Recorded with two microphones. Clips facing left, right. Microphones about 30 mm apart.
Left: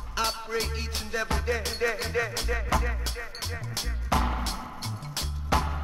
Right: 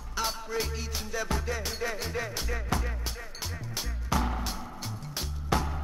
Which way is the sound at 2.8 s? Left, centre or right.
Left.